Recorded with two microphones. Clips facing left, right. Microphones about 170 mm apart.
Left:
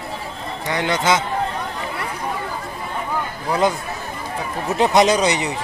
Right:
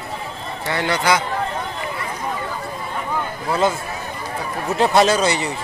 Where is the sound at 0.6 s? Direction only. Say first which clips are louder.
Even; 20° left (ahead or behind).